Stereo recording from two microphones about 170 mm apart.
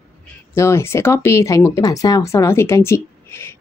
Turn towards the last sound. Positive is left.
turn(degrees=15)  # may be behind; listen again after turning